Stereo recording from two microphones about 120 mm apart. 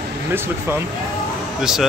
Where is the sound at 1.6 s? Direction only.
5° right (ahead or behind).